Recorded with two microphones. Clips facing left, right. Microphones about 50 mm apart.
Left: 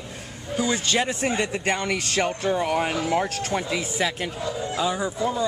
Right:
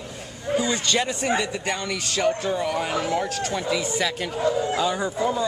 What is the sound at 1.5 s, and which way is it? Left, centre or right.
Speech, left.